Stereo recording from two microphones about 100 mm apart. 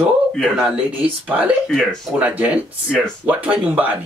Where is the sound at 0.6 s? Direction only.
15° right (ahead or behind).